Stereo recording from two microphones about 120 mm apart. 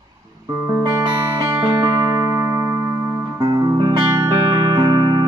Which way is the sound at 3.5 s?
35° right (ahead or behind).